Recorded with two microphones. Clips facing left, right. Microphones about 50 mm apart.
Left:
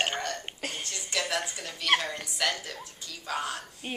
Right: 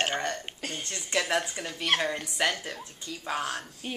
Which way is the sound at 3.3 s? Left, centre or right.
Centre.